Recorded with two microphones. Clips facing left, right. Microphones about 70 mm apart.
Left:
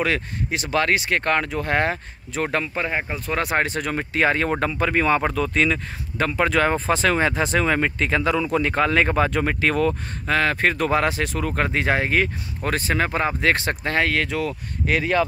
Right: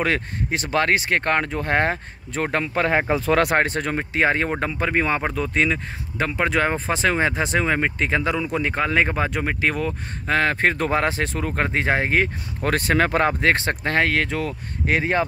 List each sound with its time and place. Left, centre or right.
0.0 s speech: right
2.6 s speech: right
3.5 s speech: right
3.9 s speech: right
10.2 s speech: right
12.6 s speech: right
13.4 s speech: right